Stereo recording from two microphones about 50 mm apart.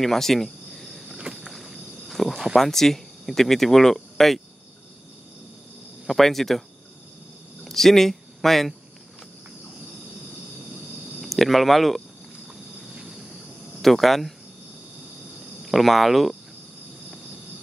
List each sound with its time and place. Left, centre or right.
0.0 s cricket: centre
1.1 s a sound: centre
1.4 s wild animals: centre
2.5 s speech: centre
6.0 s speech: centre
7.6 s speech: centre
11.1 s a sound: centre
13.7 s speech: centre
15.6 s speech: centre